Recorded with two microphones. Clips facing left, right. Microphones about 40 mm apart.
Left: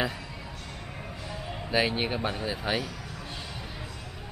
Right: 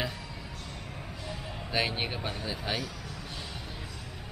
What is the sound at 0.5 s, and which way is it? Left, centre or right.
Music, left.